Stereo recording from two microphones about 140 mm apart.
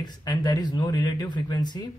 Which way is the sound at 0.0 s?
30° left (ahead or behind).